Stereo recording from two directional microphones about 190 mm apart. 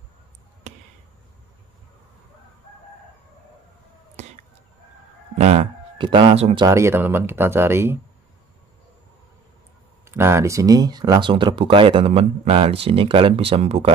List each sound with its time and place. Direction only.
0.7 s basketball bounce: 40° right (ahead or behind)
4.2 s a sound: 35° right (ahead or behind)
5.4 s speech: 35° right (ahead or behind)
6.6 s speech: 15° right (ahead or behind)
10.0 s speech: 15° right (ahead or behind); by 13.9 s 30° right (ahead or behind)